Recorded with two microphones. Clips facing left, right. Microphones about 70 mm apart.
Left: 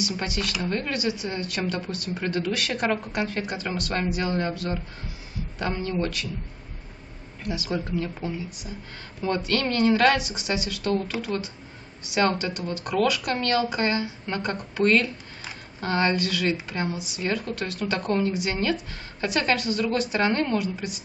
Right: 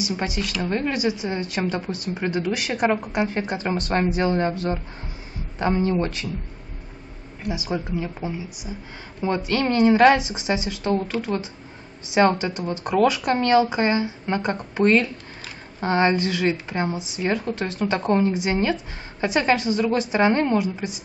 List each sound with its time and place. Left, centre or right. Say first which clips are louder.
0.0 s speech: right 2 dB; right
7.4 s speech: right 2 dB; centre